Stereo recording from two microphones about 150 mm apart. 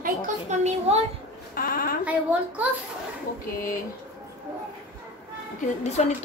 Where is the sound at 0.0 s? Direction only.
50° right (ahead or behind).